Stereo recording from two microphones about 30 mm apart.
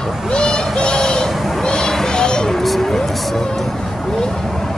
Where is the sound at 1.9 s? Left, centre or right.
Left.